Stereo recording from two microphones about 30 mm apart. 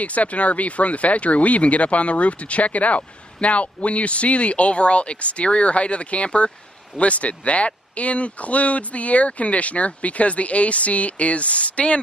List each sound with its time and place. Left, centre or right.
0.0 s speech: left